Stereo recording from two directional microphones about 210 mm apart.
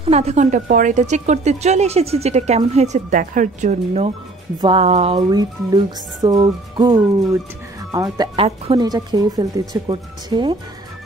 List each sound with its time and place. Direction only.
0.0 s speech: 30° right (ahead or behind)
5.3 s speech: 20° right (ahead or behind)